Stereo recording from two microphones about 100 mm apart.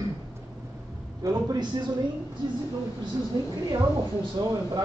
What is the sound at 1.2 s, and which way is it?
Speech, 40° right (ahead or behind).